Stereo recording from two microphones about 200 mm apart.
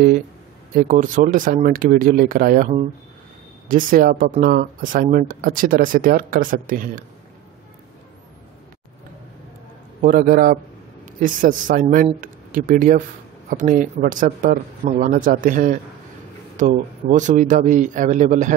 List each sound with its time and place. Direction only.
0.7 s speech: 40° right (ahead or behind)
10.0 s a man's voice: 45° right (ahead or behind)